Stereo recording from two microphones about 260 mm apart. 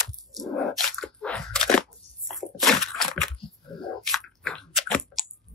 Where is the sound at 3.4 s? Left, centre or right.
Centre.